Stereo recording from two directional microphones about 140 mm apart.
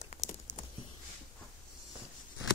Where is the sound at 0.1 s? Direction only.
50° left (ahead or behind).